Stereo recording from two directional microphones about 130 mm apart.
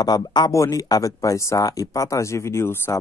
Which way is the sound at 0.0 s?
30° left (ahead or behind).